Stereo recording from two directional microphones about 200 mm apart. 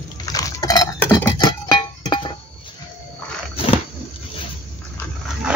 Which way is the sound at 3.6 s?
30° left (ahead or behind).